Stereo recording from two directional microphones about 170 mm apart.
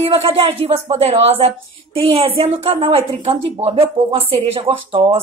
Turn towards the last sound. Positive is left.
turn(degrees=-30)  # may be behind; listen again after turning